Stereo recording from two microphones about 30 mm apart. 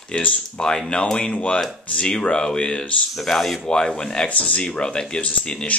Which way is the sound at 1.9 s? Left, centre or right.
Left.